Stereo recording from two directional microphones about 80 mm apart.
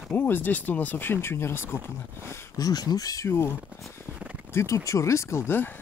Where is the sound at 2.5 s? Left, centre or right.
Left.